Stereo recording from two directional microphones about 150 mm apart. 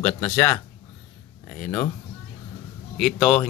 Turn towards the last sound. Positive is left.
turn(degrees=0)  # may be behind; listen again after turning